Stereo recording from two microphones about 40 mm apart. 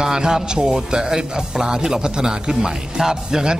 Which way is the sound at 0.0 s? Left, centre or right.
Centre.